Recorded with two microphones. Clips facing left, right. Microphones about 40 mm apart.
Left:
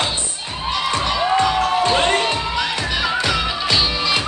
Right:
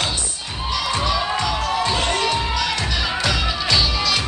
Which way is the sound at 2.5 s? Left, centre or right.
Centre.